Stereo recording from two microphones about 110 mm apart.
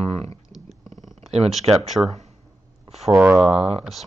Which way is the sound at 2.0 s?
90° right.